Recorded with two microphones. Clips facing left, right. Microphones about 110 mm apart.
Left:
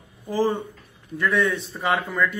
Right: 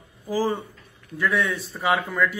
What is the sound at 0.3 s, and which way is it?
Speech, centre (ahead or behind).